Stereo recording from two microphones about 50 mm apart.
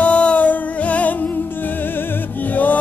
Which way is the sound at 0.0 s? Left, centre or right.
Left.